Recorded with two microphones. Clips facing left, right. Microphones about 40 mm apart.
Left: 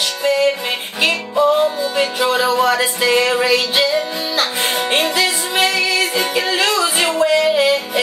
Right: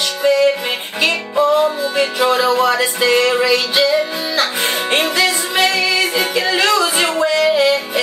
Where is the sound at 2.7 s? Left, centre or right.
Centre.